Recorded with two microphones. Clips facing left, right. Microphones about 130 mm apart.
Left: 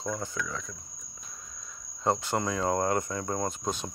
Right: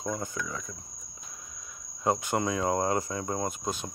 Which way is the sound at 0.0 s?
15° right (ahead or behind).